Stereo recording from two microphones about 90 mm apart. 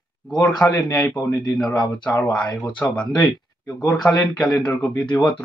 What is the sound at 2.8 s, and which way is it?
Speech, 25° left (ahead or behind).